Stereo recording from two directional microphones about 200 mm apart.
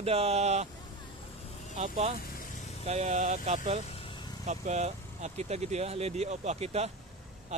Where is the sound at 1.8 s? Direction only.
35° right (ahead or behind).